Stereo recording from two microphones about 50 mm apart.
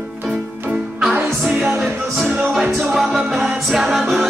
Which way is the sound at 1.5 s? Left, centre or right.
Centre.